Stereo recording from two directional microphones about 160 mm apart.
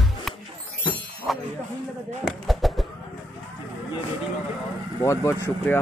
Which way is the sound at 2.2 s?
Centre (ahead or behind).